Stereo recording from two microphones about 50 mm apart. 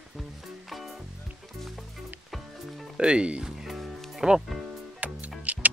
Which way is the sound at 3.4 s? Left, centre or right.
Centre.